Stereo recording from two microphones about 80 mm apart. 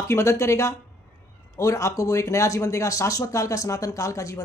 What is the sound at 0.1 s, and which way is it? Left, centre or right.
Speech, left.